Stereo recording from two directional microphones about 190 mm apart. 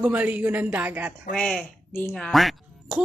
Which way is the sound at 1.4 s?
5° left (ahead or behind).